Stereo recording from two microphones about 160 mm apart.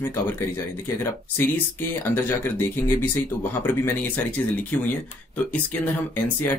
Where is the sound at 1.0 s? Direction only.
15° left (ahead or behind).